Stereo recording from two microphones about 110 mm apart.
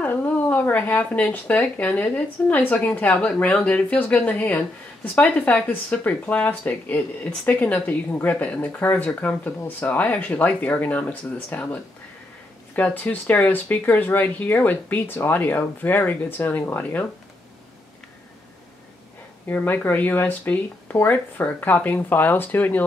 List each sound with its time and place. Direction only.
0.0 s speech: 15° left (ahead or behind)
19.4 s speech: 15° left (ahead or behind)